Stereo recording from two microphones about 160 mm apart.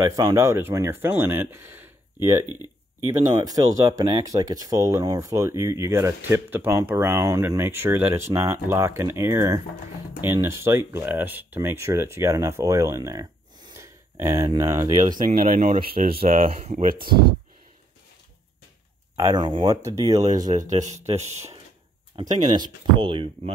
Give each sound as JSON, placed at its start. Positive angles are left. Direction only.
{"t": 0.0, "sound": "speech", "side_deg": -20}
{"t": 2.4, "sound": "speech", "side_deg": 25}
{"t": 3.1, "sound": "speech", "side_deg": -20}
{"t": 13.7, "sound": "a sound", "side_deg": -15}
{"t": 14.5, "sound": "speech", "side_deg": -20}
{"t": 15.0, "sound": "speech", "side_deg": -60}
{"t": 16.2, "sound": "speech", "side_deg": -40}
{"t": 19.1, "sound": "speech", "side_deg": -25}
{"t": 21.2, "sound": "speech", "side_deg": -45}
{"t": 22.5, "sound": "speech", "side_deg": -30}